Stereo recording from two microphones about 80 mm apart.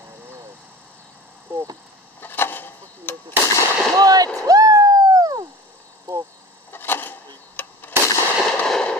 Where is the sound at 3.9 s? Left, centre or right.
Right.